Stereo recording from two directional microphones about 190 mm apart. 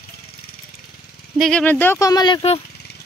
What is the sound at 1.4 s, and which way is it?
Speech, 5° left (ahead or behind).